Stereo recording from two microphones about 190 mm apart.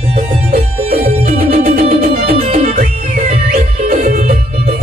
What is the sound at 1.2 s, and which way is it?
Music, 50° right (ahead or behind).